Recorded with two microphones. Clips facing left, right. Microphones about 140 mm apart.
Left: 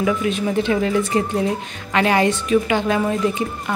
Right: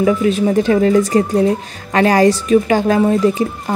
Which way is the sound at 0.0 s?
35° right (ahead or behind).